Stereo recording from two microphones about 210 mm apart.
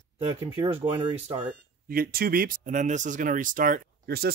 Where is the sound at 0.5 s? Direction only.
25° right (ahead or behind).